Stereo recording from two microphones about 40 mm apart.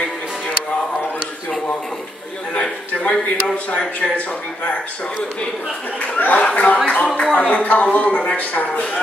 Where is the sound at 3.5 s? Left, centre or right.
Left.